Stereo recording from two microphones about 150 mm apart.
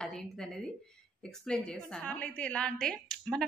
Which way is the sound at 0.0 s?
5° left (ahead or behind).